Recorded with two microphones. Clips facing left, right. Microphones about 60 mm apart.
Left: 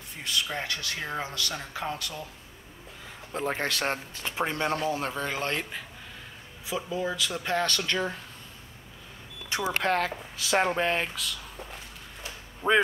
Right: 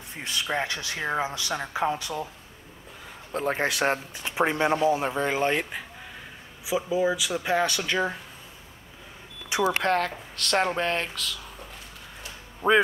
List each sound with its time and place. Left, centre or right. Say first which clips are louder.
0.1 s speech: right 3 dB; right
3.3 s speech: right 4 dB; centre
9.6 s speech: right 3 dB; centre
12.6 s speech: right 3 dB; centre